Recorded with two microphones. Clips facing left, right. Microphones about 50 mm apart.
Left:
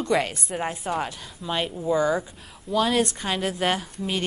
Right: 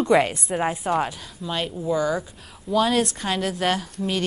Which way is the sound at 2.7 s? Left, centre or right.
Centre.